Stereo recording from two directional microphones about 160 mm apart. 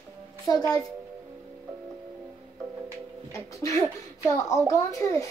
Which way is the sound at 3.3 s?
20° left (ahead or behind).